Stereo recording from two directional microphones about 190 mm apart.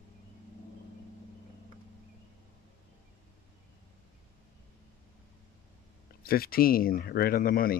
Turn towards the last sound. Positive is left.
turn(degrees=50)  # may be behind; listen again after turning